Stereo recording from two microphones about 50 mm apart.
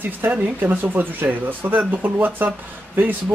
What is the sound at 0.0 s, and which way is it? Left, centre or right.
Speech, right.